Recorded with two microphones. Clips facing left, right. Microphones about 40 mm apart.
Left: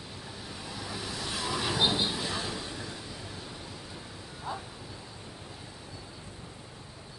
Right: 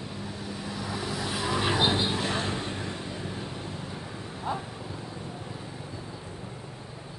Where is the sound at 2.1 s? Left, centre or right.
Right.